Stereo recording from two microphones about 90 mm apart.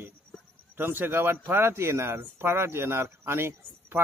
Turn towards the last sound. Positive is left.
turn(degrees=-25)  # may be behind; listen again after turning